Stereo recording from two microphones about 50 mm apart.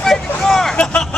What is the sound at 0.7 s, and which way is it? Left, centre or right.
Vehicle, left.